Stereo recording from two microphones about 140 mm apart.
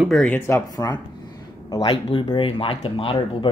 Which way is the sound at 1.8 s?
45° left (ahead or behind).